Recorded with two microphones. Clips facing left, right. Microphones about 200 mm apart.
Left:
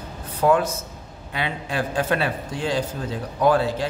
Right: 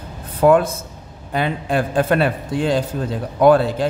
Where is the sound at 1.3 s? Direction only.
50° right (ahead or behind).